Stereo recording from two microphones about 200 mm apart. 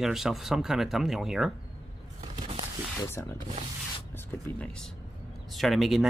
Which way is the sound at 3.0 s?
10° left (ahead or behind).